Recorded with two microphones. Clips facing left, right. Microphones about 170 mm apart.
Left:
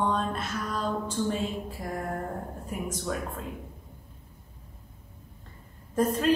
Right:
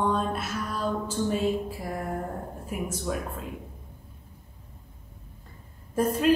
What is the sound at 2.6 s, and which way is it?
Speech, 5° right (ahead or behind).